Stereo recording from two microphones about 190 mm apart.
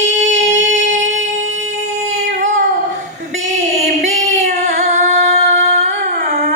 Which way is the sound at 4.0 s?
40° right (ahead or behind).